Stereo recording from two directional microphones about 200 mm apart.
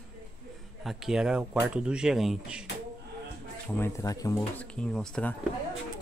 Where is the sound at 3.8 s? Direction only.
15° left (ahead or behind).